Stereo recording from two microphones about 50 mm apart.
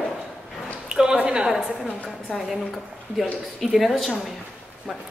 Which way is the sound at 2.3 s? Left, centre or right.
Centre.